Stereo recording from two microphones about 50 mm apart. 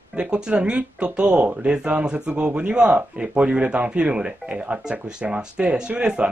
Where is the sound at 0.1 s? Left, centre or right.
Centre.